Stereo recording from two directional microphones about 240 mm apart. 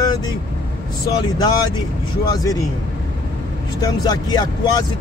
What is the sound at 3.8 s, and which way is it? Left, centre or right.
Speech, centre.